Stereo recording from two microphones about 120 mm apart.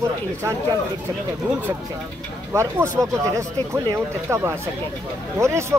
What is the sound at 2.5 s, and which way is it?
Speech, 25° right (ahead or behind).